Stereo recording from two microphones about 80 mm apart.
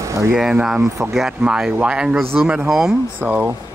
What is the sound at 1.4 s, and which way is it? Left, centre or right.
Speech, centre.